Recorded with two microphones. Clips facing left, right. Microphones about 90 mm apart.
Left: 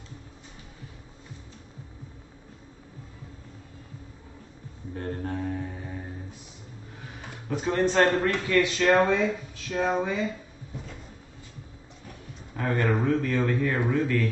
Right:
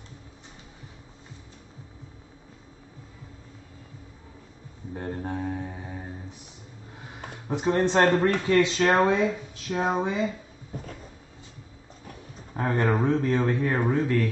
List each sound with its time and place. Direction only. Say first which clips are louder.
4.9 s a sound: even; 15° right (ahead or behind)
7.4 s speech: right 1 dB; 30° right (ahead or behind)
8.2 s speech: right 4 dB; 40° right (ahead or behind)
8.5 s speech: left 1 dB; 30° right (ahead or behind)
10.7 s cupboard open or close: right 3 dB; 45° right (ahead or behind)
12.1 s a sound: right 2 dB; 35° right (ahead or behind)
13.0 s speech: right 1 dB; 25° right (ahead or behind)